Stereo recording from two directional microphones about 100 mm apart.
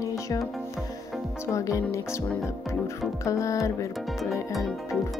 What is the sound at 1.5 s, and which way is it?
Speech, 30° left (ahead or behind).